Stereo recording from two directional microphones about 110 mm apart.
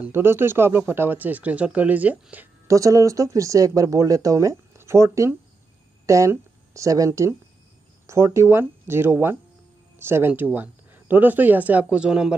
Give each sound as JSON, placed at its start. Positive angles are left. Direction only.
{"t": 0.0, "sound": "speech", "side_deg": -20}
{"t": 2.7, "sound": "speech", "side_deg": -30}